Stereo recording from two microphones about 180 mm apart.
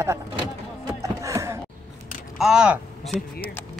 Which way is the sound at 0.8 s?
20° right (ahead or behind).